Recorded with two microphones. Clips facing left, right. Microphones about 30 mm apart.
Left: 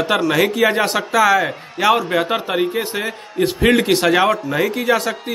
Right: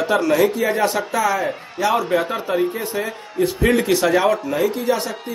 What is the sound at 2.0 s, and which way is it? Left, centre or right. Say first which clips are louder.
A man's voice: left 2 dB; left.